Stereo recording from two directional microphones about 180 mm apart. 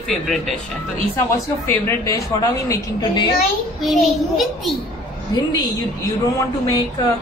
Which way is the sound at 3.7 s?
Centre (ahead or behind).